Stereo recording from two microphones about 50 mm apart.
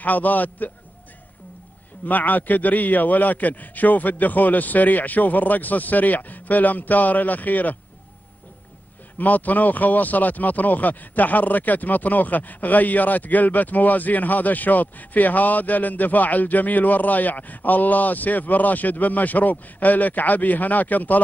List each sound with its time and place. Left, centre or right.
0.0 s speech: left
2.0 s speech: left
9.2 s speech: left